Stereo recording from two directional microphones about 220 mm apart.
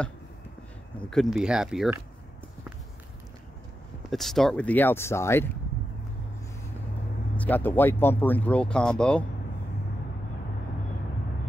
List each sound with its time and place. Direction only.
1.1 s speech: centre (ahead or behind)
4.1 s speech: centre (ahead or behind)
7.3 s speech: 10° left (ahead or behind)